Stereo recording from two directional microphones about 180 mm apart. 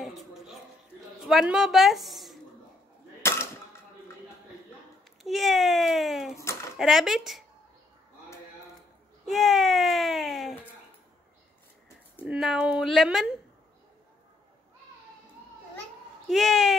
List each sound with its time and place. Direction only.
0.0 s a sound: centre (ahead or behind)
1.2 s a woman's voice: centre (ahead or behind)
3.2 s a sound: 15° left (ahead or behind)
5.2 s speech: centre (ahead or behind)
9.2 s speech: centre (ahead or behind)
12.3 s speech: 5° right (ahead or behind)
16.3 s speech: centre (ahead or behind)